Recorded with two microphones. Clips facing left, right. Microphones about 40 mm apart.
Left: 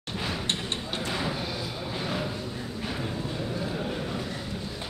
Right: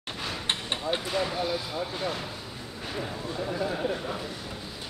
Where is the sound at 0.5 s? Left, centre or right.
Centre.